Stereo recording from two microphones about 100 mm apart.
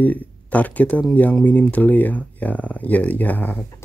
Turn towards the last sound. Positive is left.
turn(degrees=20)  # may be behind; listen again after turning